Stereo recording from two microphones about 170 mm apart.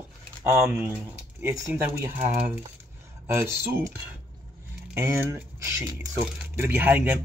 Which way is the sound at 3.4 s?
15° right (ahead or behind).